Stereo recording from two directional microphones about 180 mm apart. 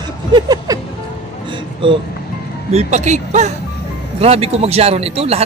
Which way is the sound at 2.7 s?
40° right (ahead or behind).